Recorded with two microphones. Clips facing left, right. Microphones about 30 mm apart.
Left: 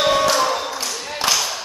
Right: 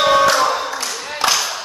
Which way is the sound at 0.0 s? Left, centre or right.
Centre.